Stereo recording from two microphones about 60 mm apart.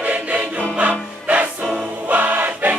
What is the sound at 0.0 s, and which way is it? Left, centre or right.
Music, right.